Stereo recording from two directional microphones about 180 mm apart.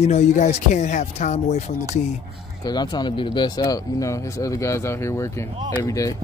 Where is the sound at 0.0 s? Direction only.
40° left (ahead or behind).